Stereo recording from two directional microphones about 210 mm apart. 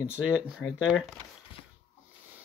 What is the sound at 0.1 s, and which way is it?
Speech, 5° right (ahead or behind).